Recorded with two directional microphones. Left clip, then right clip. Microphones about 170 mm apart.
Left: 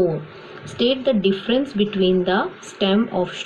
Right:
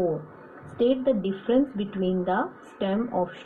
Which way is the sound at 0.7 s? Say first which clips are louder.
Left 4 dB; 45° right (ahead or behind).